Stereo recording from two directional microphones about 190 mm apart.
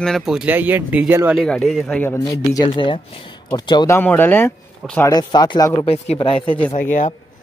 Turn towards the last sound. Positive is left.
turn(degrees=45)  # may be behind; listen again after turning